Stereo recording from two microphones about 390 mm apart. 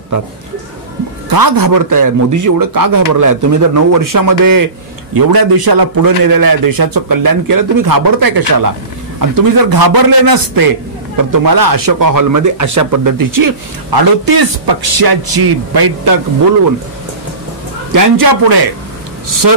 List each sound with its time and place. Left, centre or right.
1.3 s a man's voice: right
5.1 s speech: right
17.9 s a man's voice: right